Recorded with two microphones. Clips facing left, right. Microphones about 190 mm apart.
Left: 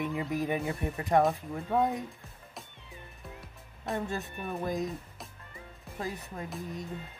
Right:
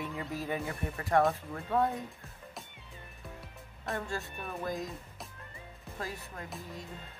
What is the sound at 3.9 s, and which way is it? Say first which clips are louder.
Speech: left 4 dB; 20° left (ahead or behind).